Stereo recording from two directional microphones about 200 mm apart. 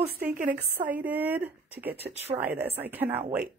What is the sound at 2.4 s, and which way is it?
A woman's voice, 10° right (ahead or behind).